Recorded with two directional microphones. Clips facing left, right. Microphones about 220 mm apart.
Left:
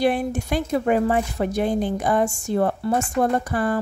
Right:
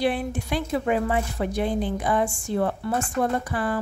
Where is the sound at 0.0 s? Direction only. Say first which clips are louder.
Left 4 dB; 45° left (ahead or behind).